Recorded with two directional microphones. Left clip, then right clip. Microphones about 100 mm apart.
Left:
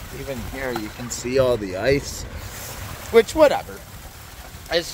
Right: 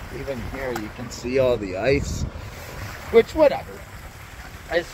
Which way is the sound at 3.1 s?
30° left (ahead or behind).